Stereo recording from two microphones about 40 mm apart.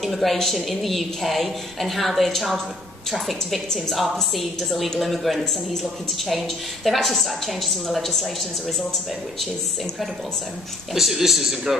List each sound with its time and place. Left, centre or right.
0.0 s speech: centre
10.9 s speech: centre